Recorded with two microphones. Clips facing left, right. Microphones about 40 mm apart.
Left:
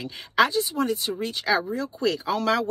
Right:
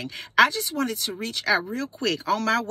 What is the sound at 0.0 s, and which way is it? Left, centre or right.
Speech, right.